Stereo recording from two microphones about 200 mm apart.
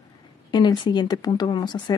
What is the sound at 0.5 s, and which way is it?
A woman's voice, 20° left (ahead or behind).